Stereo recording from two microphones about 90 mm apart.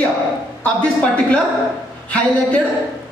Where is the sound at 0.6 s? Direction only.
10° left (ahead or behind).